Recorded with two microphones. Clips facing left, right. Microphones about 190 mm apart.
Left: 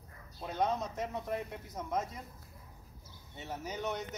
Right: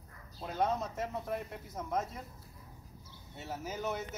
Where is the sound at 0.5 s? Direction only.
Centre (ahead or behind).